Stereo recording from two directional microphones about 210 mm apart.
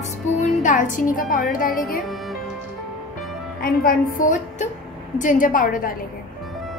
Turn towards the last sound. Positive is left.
turn(degrees=40)  # may be behind; listen again after turning